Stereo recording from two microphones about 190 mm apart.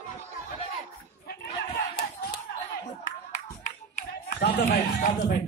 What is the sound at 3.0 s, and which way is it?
Clapping, 45° left (ahead or behind).